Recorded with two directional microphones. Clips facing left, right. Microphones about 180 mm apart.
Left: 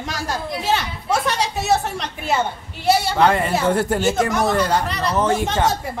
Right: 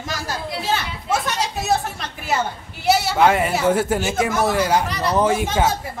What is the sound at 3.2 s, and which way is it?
Speech, 5° right (ahead or behind).